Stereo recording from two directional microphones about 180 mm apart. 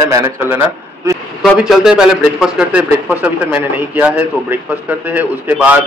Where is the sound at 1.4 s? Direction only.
Centre (ahead or behind).